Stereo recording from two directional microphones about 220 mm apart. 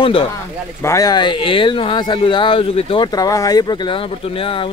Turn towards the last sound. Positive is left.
turn(degrees=25)  # may be behind; listen again after turning